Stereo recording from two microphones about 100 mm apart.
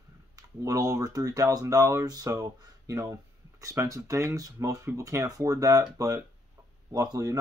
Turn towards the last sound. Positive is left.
turn(degrees=-40)  # may be behind; listen again after turning